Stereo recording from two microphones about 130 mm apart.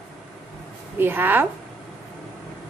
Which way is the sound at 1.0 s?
15° right (ahead or behind).